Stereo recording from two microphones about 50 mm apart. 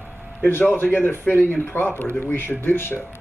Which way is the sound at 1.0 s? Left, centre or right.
Left.